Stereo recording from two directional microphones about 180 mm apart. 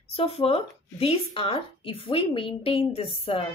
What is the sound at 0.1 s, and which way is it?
Speech, 30° left (ahead or behind).